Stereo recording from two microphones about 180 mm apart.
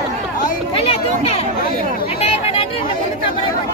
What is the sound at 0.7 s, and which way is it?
Chatter, 35° left (ahead or behind).